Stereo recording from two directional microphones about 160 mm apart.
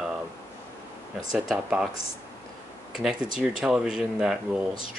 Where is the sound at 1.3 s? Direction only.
5° right (ahead or behind).